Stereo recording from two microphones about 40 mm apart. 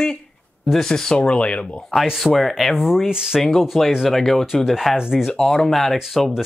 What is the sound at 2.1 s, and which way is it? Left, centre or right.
Speech, centre.